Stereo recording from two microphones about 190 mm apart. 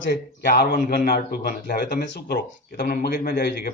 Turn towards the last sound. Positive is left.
turn(degrees=55)  # may be behind; listen again after turning